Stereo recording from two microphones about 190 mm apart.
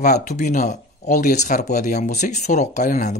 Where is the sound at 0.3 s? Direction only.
40° left (ahead or behind).